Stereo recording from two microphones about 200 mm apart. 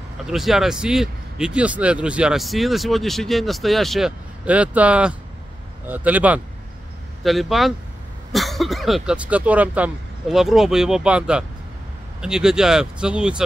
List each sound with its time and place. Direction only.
0.3 s speech: centre (ahead or behind)